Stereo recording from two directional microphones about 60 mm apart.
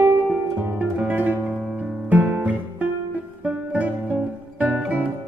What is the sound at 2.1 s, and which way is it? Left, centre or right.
Guitar, right.